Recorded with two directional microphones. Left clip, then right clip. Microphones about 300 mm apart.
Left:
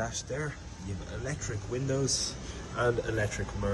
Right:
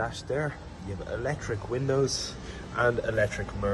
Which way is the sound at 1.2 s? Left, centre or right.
Centre.